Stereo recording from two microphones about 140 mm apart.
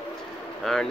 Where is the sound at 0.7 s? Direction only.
Centre (ahead or behind).